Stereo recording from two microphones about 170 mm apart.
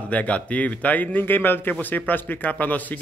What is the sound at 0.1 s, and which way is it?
A man's voice, 10° left (ahead or behind).